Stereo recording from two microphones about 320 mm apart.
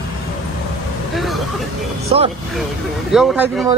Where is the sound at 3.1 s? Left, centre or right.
Centre.